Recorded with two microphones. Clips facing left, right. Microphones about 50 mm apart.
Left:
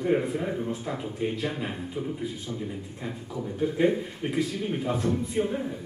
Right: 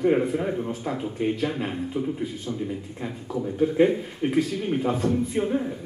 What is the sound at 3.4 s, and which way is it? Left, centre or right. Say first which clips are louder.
A man's voice: right 5 dB; centre.